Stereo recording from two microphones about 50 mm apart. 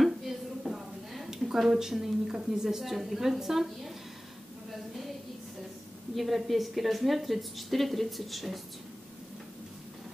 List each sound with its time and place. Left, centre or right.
0.0 s a woman's voice: centre
6.1 s a woman's voice: centre